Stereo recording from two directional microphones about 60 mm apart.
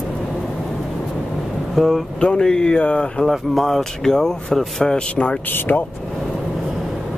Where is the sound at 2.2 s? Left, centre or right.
Centre.